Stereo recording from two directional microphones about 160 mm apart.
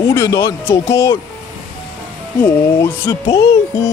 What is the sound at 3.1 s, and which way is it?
Speech, 25° left (ahead or behind).